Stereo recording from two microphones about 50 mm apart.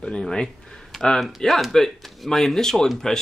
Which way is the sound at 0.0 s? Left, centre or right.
Centre.